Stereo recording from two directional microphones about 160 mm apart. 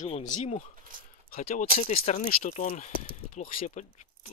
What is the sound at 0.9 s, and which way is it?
Speech, 60° right (ahead or behind).